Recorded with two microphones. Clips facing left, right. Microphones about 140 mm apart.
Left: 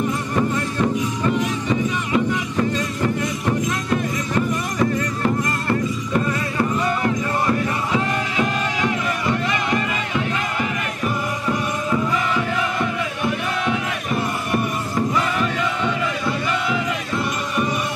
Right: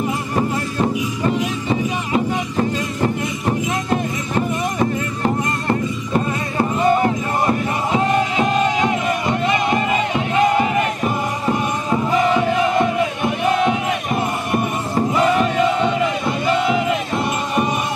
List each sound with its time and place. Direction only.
1.2 s music: 30° right (ahead or behind)
5.2 s music: 25° right (ahead or behind)